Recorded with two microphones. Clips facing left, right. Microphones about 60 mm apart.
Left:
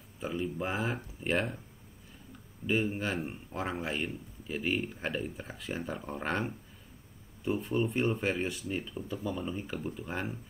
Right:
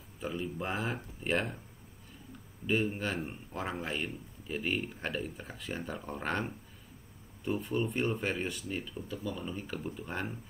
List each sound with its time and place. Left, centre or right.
0.2 s speech: centre
2.6 s speech: centre